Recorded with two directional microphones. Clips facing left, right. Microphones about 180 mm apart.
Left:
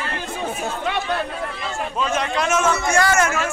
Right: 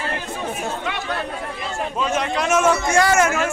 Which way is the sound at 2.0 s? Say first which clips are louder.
Even; 15° right (ahead or behind).